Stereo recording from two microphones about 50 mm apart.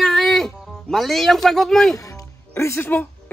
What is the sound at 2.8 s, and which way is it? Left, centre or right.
Speech, left.